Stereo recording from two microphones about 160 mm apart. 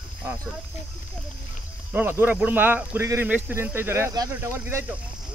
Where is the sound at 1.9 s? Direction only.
15° right (ahead or behind).